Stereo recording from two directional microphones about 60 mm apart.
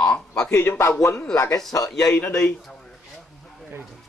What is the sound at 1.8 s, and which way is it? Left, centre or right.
Speech, centre.